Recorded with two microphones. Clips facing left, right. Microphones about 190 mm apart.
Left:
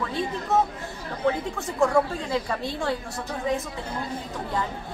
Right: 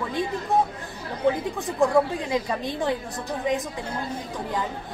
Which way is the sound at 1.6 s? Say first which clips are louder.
Right 1 dB; 15° right (ahead or behind).